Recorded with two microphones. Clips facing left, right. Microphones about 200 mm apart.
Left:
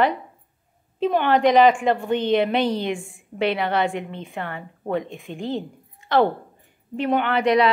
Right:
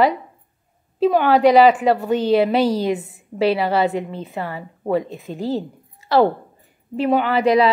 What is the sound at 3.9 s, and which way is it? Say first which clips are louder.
Speech: right 5 dB; 35° right (ahead or behind).